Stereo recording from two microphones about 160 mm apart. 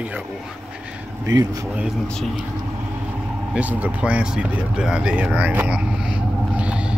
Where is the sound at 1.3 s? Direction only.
25° right (ahead or behind).